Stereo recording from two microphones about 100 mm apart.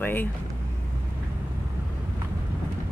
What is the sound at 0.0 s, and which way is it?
Speech, 20° left (ahead or behind).